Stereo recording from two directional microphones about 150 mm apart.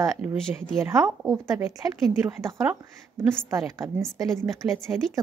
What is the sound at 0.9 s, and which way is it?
Speech, 20° right (ahead or behind).